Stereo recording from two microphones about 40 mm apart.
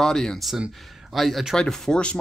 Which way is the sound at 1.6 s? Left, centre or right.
Centre.